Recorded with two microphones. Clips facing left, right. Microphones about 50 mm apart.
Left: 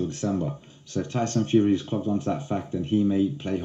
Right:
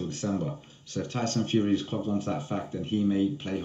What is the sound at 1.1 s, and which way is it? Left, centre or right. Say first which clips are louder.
Speech: left 5 dB; centre.